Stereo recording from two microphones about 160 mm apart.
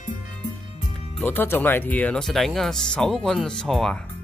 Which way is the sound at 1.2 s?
15° left (ahead or behind).